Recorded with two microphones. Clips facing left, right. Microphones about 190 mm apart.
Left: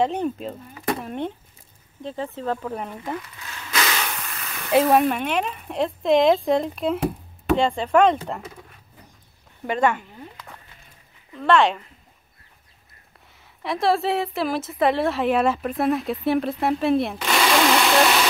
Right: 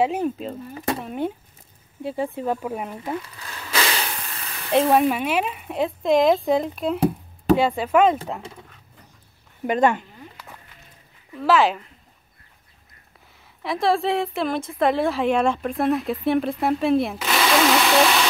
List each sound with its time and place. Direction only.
0.0 s speech: 5° right (ahead or behind)
3.2 s a sound: 30° right (ahead or behind)
4.6 s speech: centre (ahead or behind)
9.7 s speech: 20° right (ahead or behind)
11.3 s speech: 5° right (ahead or behind)
13.3 s a woman's voice: centre (ahead or behind)